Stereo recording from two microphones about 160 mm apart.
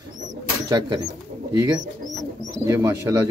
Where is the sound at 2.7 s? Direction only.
15° right (ahead or behind).